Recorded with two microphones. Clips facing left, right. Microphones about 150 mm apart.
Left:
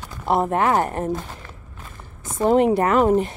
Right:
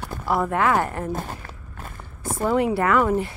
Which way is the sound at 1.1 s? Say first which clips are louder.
Left 1 dB; 50° right (ahead or behind).